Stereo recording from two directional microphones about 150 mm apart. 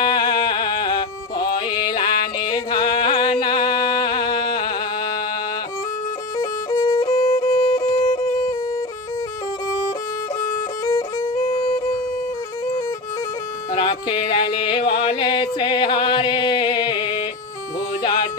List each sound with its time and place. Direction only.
0.0 s music: 30° left (ahead or behind)
6.3 s violin: 25° left (ahead or behind)
7.7 s music: 35° left (ahead or behind)
10.9 s music: 25° left (ahead or behind)
13.7 s music: 30° left (ahead or behind)